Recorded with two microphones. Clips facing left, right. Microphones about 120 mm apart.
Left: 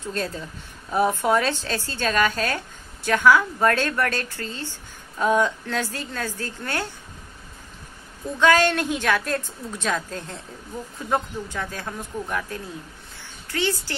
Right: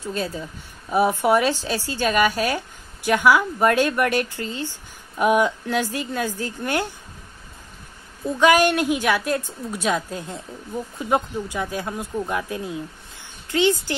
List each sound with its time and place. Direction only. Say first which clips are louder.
0.0 s speech: right 2 dB; 5° right (ahead or behind)
8.4 s speech: right 2 dB; 15° right (ahead or behind)
13.2 s a sound: right 6 dB; 15° right (ahead or behind)